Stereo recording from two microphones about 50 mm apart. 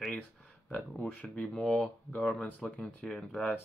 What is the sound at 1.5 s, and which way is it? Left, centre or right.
Speech, centre.